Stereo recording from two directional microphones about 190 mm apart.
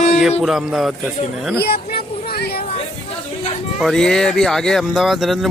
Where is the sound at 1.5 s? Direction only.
55° left (ahead or behind).